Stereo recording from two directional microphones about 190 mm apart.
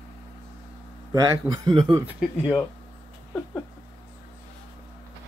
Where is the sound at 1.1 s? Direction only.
20° right (ahead or behind).